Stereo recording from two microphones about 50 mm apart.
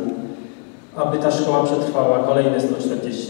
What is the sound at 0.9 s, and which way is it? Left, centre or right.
Speech, right.